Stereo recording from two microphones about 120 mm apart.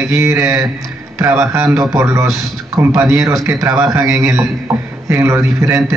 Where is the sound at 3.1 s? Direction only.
25° right (ahead or behind).